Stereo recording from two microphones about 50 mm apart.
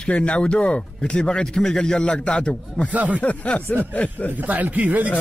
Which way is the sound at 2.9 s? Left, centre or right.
Right.